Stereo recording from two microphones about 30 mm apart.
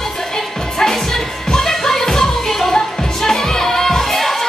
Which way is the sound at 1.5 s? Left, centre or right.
Centre.